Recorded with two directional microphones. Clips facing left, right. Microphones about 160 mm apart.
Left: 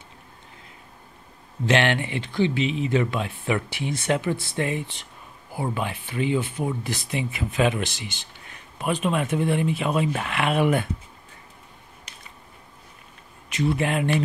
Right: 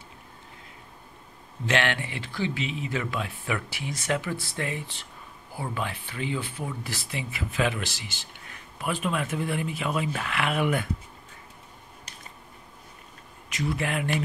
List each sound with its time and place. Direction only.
1.7 s speech: 20° left (ahead or behind)
13.5 s speech: 25° left (ahead or behind)